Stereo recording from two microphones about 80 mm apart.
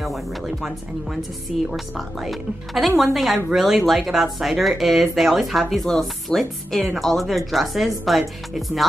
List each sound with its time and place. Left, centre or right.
0.0 s speech: centre